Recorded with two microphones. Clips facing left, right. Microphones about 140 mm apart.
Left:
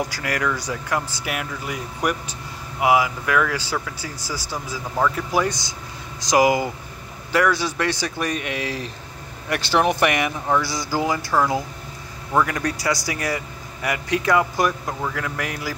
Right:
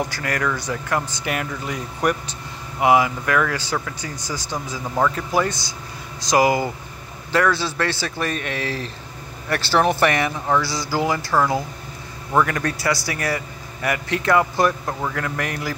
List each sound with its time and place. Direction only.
0.2 s speech: 15° left (ahead or behind)